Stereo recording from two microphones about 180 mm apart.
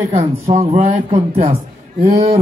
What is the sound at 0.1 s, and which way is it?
Speech, 35° right (ahead or behind).